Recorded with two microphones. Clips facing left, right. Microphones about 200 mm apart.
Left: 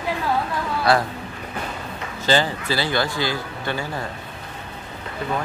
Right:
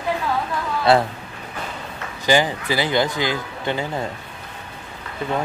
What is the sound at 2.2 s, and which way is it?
Speech, 15° right (ahead or behind).